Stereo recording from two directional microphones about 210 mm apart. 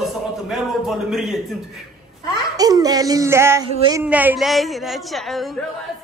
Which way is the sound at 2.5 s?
15° right (ahead or behind).